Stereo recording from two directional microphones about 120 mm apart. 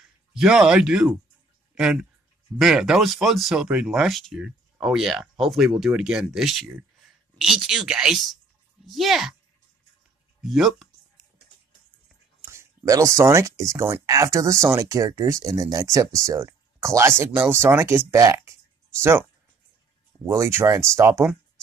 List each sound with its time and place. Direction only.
0.3 s speech: 5° right (ahead or behind)
10.4 s speech: centre (ahead or behind)
12.4 s speech: 20° right (ahead or behind)
20.1 s speech: 25° right (ahead or behind)